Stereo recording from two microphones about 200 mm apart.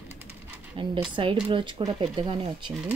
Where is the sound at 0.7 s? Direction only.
25° right (ahead or behind).